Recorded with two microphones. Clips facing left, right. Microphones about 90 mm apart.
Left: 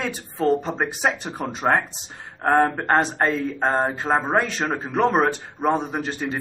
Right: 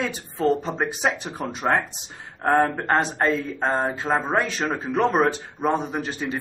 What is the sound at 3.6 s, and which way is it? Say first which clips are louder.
Speech: left 2 dB; 15° left (ahead or behind).